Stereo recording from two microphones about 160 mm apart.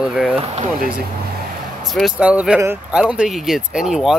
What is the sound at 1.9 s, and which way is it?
Speech, centre (ahead or behind).